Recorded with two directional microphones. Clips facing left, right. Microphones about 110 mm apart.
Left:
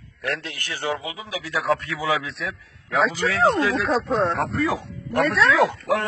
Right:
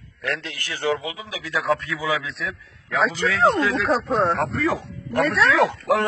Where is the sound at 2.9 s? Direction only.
5° left (ahead or behind).